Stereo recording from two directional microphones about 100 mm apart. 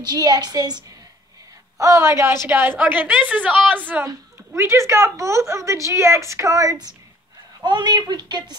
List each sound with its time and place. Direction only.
0.0 s speech: 45° right (ahead or behind)
1.8 s a woman's voice: 30° right (ahead or behind); by 4.0 s 15° right (ahead or behind)
4.6 s a woman's voice: 30° right (ahead or behind)
7.6 s speech: 50° right (ahead or behind)